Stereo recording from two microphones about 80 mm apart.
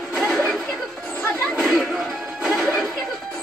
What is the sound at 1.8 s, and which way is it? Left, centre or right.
Music, centre.